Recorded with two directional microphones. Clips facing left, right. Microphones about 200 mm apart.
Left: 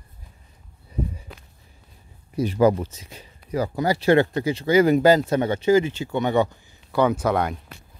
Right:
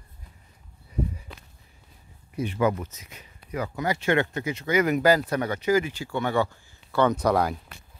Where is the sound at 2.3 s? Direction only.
35° left (ahead or behind); by 7.5 s centre (ahead or behind).